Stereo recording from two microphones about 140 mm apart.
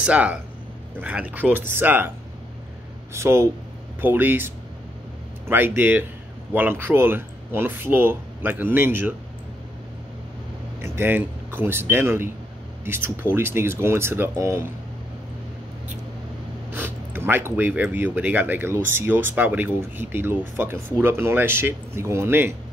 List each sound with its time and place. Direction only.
0.0 s speech: 10° right (ahead or behind)
5.5 s speech: 15° right (ahead or behind)
10.8 s speech: 15° right (ahead or behind)
16.7 s speech: 15° right (ahead or behind)